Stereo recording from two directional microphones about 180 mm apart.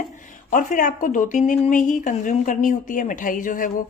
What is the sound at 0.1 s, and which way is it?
Speech, 45° left (ahead or behind).